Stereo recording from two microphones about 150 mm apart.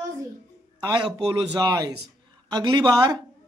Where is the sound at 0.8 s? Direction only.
30° right (ahead or behind).